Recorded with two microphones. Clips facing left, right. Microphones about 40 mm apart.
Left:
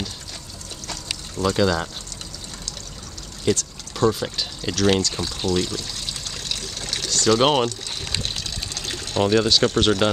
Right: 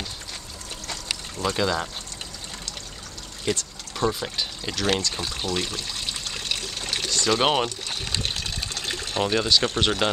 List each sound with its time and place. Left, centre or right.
0.8 s a sound: centre
3.4 s speech: centre
5.0 s trickle: centre
7.4 s speech: centre
8.2 s water: centre
9.2 s speech: centre